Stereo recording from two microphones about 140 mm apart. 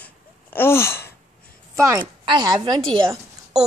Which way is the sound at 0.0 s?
15° left (ahead or behind).